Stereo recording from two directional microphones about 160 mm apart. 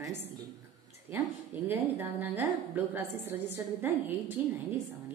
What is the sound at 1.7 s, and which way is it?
A woman's voice, 10° right (ahead or behind).